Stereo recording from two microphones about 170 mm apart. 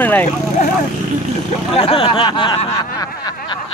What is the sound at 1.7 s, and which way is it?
Speech, 35° left (ahead or behind).